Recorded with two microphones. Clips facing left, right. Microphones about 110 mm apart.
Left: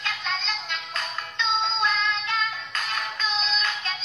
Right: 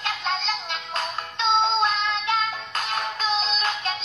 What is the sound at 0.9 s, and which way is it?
Music, 30° right (ahead or behind).